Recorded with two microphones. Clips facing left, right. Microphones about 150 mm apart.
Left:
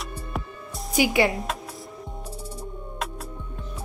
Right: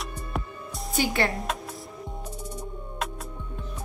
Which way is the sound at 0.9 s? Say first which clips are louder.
Left 5 dB; 15° left (ahead or behind).